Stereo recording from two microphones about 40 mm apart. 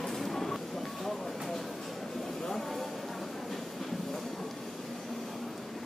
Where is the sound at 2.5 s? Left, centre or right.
Centre.